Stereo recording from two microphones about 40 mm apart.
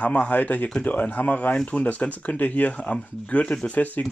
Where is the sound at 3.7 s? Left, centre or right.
Left.